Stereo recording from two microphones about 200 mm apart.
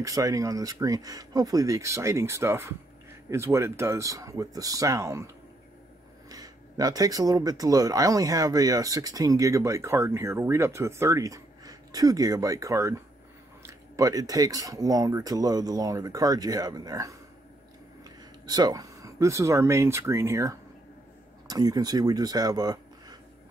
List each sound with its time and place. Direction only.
0.0 s speech: 15° right (ahead or behind)